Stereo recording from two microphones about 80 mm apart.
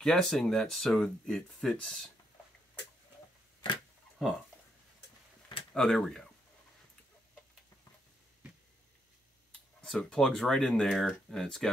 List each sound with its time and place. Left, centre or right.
0.0 s speech: centre
4.2 s speech: centre
5.7 s speech: centre
9.8 s speech: centre